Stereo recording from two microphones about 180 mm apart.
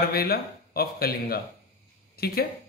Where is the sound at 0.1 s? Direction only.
55° left (ahead or behind).